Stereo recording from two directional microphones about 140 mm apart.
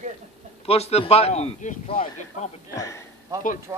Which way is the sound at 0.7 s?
45° left (ahead or behind).